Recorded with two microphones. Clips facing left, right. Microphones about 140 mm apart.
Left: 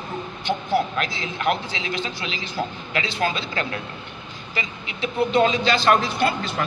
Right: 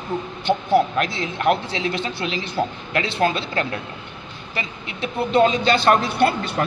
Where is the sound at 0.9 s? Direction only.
45° right (ahead or behind).